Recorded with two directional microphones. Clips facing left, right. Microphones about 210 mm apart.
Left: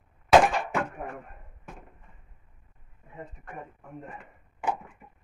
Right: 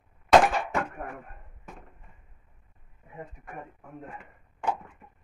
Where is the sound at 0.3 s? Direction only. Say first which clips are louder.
Even; centre (ahead or behind).